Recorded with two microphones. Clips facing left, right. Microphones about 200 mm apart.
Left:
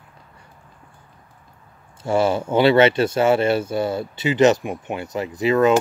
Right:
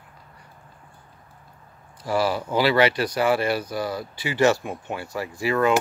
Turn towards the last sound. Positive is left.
turn(degrees=20)  # may be behind; listen again after turning